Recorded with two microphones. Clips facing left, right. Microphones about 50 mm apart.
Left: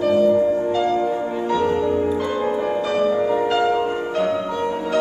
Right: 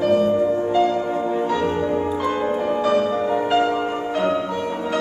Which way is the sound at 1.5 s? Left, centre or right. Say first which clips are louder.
Left 2 dB; right.